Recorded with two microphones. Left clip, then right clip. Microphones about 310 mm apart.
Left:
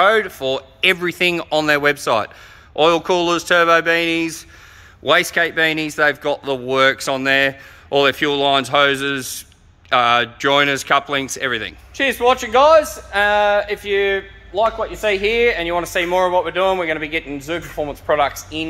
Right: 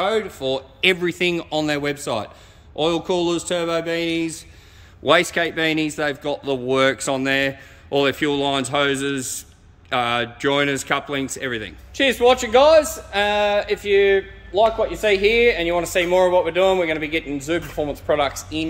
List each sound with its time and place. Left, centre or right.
0.0 s a man's voice: centre